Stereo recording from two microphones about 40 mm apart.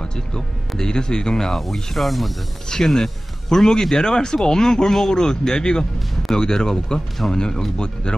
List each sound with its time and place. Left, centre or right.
0.0 s speech: centre
2.7 s speech: centre